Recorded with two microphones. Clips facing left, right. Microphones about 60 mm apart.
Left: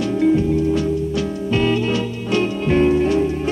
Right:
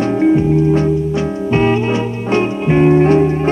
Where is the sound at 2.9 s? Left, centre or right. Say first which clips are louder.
Right 6 dB; right.